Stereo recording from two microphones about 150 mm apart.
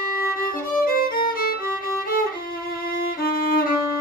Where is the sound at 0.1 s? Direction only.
75° left (ahead or behind).